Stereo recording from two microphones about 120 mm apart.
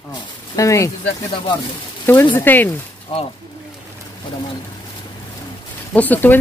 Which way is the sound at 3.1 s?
50° left (ahead or behind).